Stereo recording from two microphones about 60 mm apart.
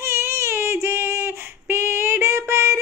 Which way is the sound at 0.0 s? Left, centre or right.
Right.